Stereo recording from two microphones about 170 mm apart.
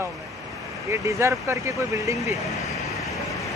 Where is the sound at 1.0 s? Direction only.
15° right (ahead or behind).